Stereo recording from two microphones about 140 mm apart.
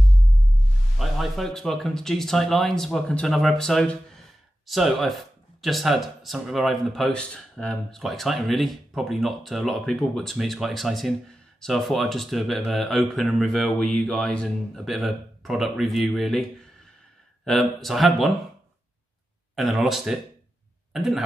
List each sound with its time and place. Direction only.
0.0 s music: centre (ahead or behind)
0.9 s speech: centre (ahead or behind)
19.5 s speech: centre (ahead or behind)